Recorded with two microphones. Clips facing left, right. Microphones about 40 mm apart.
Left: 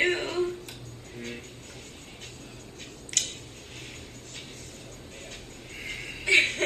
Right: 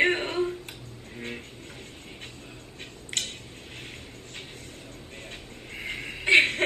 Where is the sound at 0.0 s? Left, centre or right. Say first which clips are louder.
Right 2 dB; centre.